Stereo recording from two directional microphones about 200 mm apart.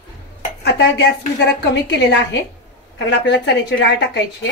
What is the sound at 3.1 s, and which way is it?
A woman's voice, 60° left (ahead or behind).